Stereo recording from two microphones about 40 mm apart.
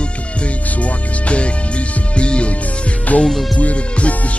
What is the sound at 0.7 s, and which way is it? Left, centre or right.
Music, left.